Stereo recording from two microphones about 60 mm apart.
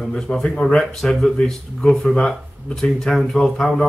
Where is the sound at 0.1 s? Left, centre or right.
Centre.